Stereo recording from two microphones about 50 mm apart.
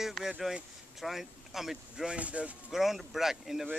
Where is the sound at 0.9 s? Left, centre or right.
Centre.